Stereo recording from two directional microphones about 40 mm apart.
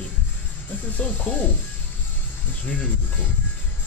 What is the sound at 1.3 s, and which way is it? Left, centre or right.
Speech, left.